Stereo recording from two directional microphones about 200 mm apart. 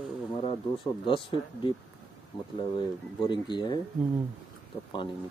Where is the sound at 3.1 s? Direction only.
20° left (ahead or behind).